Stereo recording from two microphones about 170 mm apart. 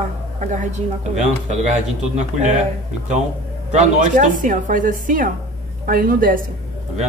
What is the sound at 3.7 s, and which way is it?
A woman's voice, 45° right (ahead or behind).